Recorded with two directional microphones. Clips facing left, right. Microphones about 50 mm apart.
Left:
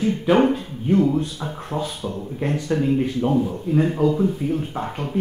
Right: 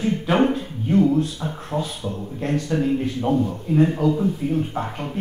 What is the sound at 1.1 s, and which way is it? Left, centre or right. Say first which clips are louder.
Speech: right 1 dB; centre.